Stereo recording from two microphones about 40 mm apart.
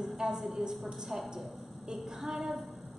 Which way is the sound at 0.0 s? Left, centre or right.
Centre.